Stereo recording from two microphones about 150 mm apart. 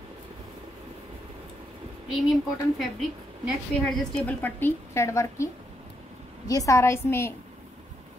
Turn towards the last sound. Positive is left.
turn(degrees=15)  # may be behind; listen again after turning